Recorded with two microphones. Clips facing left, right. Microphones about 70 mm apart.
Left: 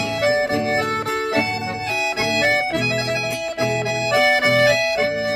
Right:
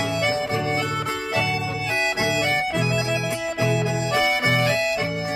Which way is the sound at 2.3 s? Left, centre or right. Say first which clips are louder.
Left 4 dB; left.